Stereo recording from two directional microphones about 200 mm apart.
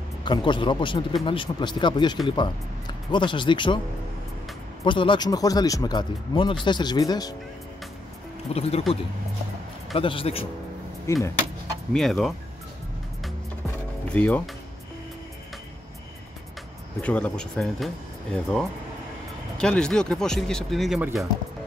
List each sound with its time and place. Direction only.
0.2 s speech: 25° left (ahead or behind)
4.8 s speech: 25° left (ahead or behind)
8.5 s speech: 30° left (ahead or behind)
9.9 s speech: 25° left (ahead or behind)
11.1 s speech: 15° left (ahead or behind)
11.9 s speech: centre (ahead or behind)
14.0 s speech: 5° left (ahead or behind)
17.0 s speech: 5° left (ahead or behind)